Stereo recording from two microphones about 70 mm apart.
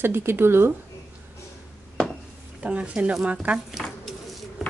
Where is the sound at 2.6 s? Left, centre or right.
Centre.